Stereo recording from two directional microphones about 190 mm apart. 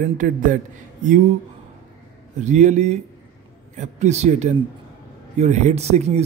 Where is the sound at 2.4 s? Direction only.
40° right (ahead or behind).